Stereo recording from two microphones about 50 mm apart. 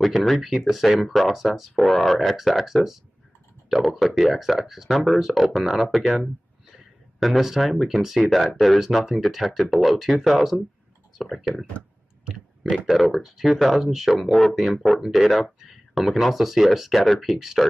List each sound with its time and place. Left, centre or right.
0.0 s speech: centre
12.8 s speech: centre